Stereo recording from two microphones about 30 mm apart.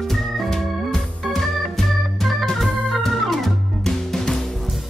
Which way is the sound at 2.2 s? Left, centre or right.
Centre.